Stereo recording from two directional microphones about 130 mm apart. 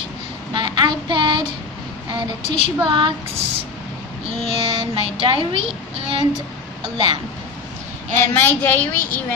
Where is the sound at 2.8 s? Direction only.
40° right (ahead or behind).